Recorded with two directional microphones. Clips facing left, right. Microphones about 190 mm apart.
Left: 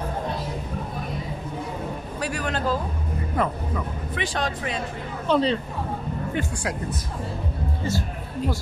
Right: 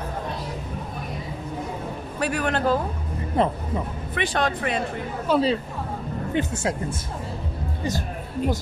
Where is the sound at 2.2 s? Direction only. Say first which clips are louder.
Right 4 dB; 60° right (ahead or behind).